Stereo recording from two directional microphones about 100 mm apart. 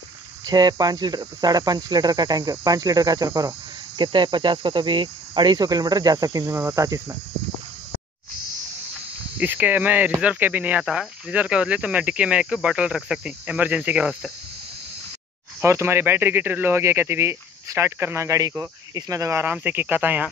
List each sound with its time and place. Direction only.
0.5 s cricket: 40° right (ahead or behind)
4.0 s cricket: 50° right (ahead or behind); by 7.2 s 35° right (ahead or behind)
9.4 s speech: 15° right (ahead or behind)
15.6 s speech: 25° right (ahead or behind)
19.4 s speech: 20° right (ahead or behind)